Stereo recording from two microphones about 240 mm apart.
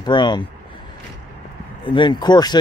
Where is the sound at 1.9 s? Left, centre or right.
Centre.